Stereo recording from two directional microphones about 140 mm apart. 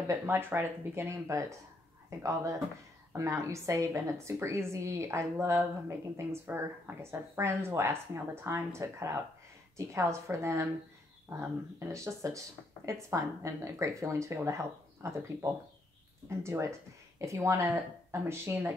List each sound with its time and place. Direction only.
0.1 s a woman's voice: 15° right (ahead or behind)